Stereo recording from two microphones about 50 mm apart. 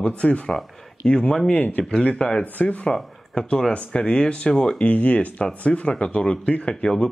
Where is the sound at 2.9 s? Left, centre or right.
Centre.